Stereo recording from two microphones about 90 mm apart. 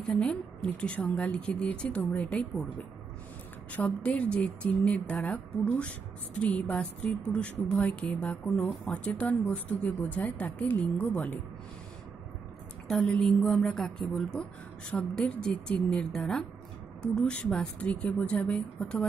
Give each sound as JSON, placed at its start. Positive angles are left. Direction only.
{"t": 0.2, "sound": "a woman's voice", "side_deg": 10}
{"t": 3.7, "sound": "a woman's voice", "side_deg": 15}
{"t": 12.8, "sound": "a sound", "side_deg": 5}
{"t": 13.7, "sound": "a woman's voice", "side_deg": 5}
{"t": 15.9, "sound": "a sound", "side_deg": 5}
{"t": 17.0, "sound": "a woman's voice", "side_deg": 10}